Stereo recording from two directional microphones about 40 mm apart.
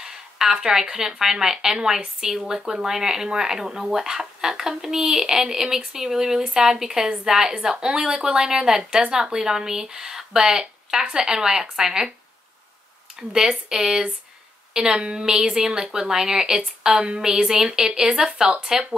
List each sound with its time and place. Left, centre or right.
0.0 s speech: centre
13.1 s speech: centre